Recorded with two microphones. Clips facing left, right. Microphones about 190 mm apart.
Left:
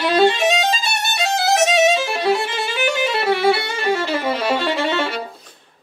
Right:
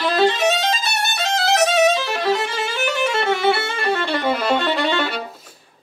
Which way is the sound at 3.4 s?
5° left (ahead or behind).